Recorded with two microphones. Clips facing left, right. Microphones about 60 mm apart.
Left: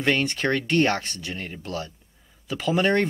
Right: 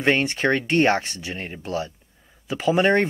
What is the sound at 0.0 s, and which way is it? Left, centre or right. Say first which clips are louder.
Speech: right 3 dB; right.